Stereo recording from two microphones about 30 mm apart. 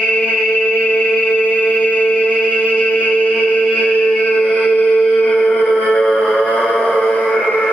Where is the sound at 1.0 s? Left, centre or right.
Left.